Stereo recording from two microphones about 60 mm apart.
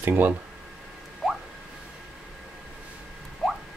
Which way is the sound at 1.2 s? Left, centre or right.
Centre.